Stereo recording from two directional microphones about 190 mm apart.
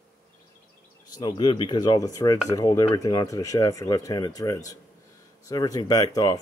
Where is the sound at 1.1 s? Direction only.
25° left (ahead or behind).